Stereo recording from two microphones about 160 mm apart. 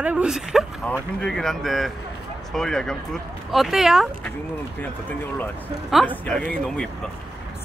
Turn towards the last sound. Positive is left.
turn(degrees=5)  # may be behind; listen again after turning